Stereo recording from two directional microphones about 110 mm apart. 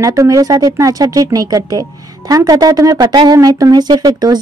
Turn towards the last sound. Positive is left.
turn(degrees=-35)  # may be behind; listen again after turning